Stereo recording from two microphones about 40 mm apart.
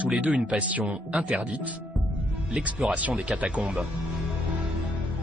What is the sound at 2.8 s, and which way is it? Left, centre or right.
Speech, right.